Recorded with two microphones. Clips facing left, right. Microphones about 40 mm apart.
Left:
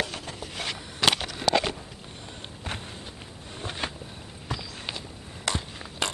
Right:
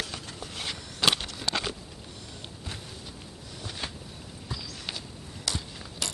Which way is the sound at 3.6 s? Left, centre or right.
Left.